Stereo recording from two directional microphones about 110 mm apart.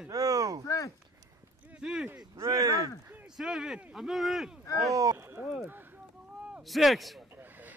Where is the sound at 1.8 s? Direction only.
5° right (ahead or behind).